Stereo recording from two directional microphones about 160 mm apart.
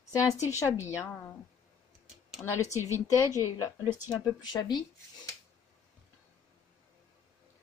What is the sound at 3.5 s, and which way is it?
Speech, 20° left (ahead or behind).